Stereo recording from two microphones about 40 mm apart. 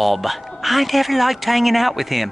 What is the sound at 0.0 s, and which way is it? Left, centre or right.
Speech, centre.